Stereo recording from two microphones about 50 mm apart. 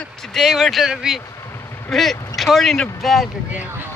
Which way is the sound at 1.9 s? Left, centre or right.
Centre.